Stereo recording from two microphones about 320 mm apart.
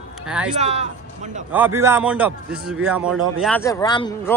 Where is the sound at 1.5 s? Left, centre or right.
Centre.